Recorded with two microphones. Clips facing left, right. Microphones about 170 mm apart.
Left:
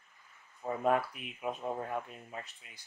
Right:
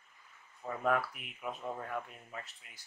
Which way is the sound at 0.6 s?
25° left (ahead or behind).